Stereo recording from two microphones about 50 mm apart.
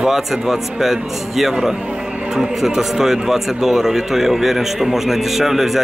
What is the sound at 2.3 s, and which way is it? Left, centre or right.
Speech, centre.